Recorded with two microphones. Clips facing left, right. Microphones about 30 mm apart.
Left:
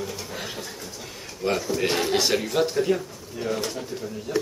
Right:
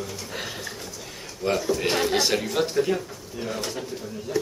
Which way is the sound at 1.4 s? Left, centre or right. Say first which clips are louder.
Even; centre.